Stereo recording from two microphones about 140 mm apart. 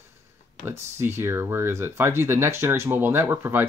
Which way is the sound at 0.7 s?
15° right (ahead or behind).